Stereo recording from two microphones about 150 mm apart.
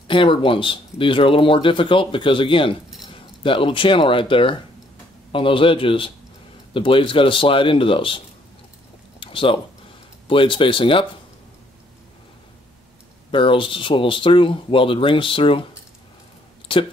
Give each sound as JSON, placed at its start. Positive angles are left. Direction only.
{"t": 0.1, "sound": "speech", "side_deg": 35}
{"t": 9.2, "sound": "a sound", "side_deg": 35}
{"t": 10.2, "sound": "speech", "side_deg": 35}
{"t": 13.3, "sound": "speech", "side_deg": 35}
{"t": 16.7, "sound": "speech", "side_deg": 35}